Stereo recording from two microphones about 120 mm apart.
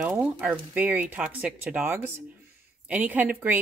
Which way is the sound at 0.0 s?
15° right (ahead or behind).